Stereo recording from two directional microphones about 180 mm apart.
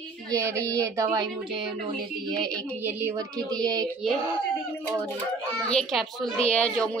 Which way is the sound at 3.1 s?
20° right (ahead or behind).